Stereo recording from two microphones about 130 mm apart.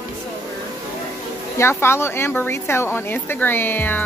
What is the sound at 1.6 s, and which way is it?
A woman's voice, 20° left (ahead or behind).